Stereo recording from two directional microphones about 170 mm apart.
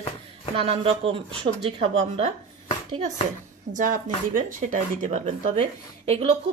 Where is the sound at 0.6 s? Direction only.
35° right (ahead or behind).